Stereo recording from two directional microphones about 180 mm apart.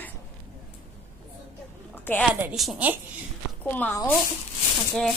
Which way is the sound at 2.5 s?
Centre (ahead or behind).